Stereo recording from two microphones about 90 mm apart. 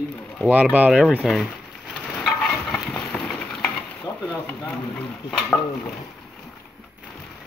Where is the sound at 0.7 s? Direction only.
15° right (ahead or behind).